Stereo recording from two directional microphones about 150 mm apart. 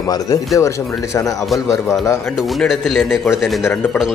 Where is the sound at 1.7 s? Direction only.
20° left (ahead or behind).